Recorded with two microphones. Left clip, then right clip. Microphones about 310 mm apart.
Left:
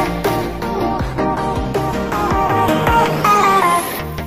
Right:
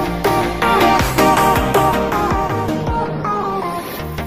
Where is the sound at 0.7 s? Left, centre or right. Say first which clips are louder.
Right 10 dB; right.